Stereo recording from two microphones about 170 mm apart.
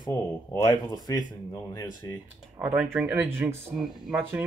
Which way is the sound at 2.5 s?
15° right (ahead or behind).